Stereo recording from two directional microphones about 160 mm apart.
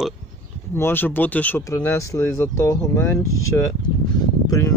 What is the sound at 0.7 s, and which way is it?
Speech, 15° left (ahead or behind).